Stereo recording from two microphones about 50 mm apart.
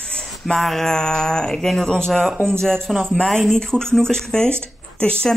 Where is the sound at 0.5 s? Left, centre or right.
Centre.